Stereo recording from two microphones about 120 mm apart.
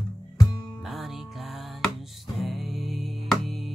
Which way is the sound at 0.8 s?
Centre (ahead or behind).